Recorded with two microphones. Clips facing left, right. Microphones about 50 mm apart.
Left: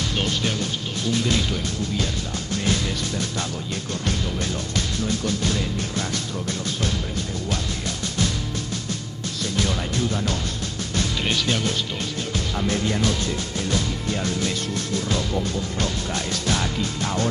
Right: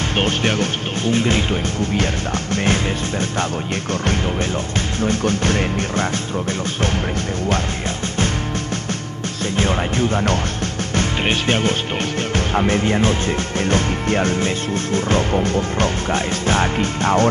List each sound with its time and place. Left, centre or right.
0.2 s speech: right
2.5 s music: right
4.7 s music: right
9.6 s speech: right
13.6 s music: right